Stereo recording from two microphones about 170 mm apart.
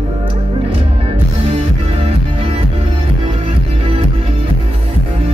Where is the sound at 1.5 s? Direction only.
35° right (ahead or behind).